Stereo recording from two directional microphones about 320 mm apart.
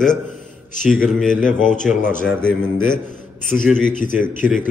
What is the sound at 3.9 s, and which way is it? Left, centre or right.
Speech, left.